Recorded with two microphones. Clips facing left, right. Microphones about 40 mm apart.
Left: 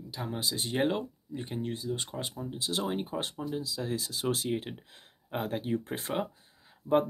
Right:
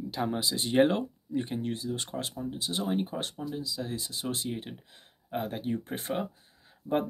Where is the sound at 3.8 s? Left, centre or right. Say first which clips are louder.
Left 2 dB; left.